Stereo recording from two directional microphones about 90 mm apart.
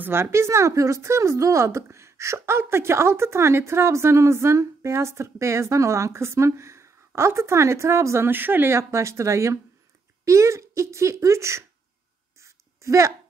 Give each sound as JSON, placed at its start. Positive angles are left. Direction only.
{"t": 0.0, "sound": "speech", "side_deg": -25}
{"t": 12.8, "sound": "speech", "side_deg": -35}